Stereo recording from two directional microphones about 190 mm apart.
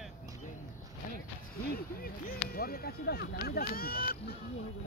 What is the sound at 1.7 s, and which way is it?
Speech, 50° left (ahead or behind).